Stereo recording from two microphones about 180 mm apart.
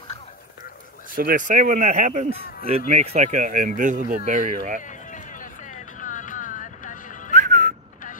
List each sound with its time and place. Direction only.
1.1 s speech: 50° right (ahead or behind)
4.8 s a sound: 45° left (ahead or behind)
7.3 s music: 45° right (ahead or behind)